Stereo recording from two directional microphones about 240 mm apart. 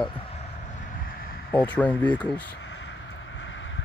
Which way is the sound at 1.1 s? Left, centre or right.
Left.